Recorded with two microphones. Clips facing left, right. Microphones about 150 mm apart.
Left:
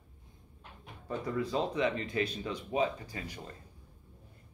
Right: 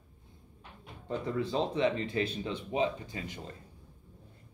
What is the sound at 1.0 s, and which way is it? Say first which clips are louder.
Speech: right 1 dB; 25° right (ahead or behind).